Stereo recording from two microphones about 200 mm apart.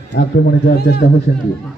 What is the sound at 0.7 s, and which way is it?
Speech, 50° left (ahead or behind).